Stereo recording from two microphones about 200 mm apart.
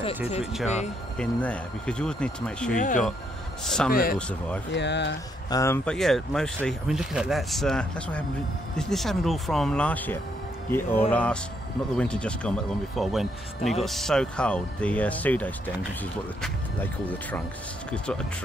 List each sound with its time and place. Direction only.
1.1 s speech: 5° left (ahead or behind)
2.7 s speech: 40° left (ahead or behind)
3.6 s speech: 5° left (ahead or behind)
3.9 s speech: 50° left (ahead or behind)
4.7 s speech: 60° left (ahead or behind)
5.5 s speech: 15° left (ahead or behind)
5.9 s speech: centre (ahead or behind)
17.9 s speech: 5° left (ahead or behind)